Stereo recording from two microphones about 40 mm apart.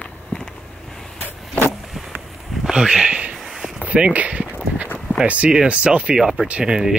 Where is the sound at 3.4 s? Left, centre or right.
Centre.